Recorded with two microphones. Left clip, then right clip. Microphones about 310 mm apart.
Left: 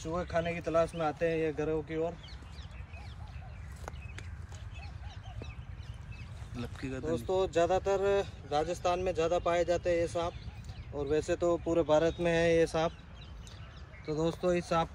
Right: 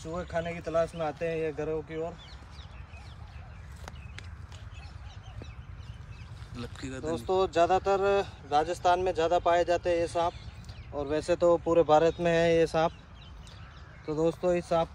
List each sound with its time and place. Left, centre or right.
0.0 s speech: centre
6.5 s speech: centre
7.1 s speech: right
14.0 s speech: right